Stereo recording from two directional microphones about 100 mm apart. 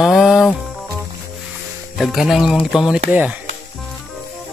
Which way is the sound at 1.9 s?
Centre (ahead or behind).